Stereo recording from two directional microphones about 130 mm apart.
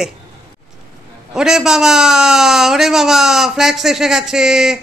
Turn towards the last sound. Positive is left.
turn(degrees=-5)  # may be behind; listen again after turning